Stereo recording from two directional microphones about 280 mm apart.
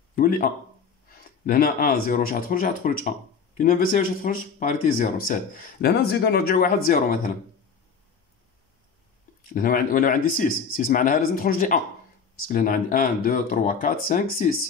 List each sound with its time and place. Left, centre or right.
0.1 s speech: left
9.5 s speech: left